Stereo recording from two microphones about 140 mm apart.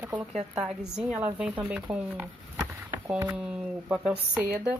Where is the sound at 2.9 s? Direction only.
15° right (ahead or behind).